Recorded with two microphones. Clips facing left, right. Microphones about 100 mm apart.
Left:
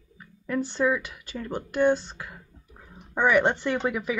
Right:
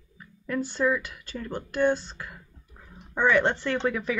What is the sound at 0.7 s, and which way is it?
Speech, 15° left (ahead or behind).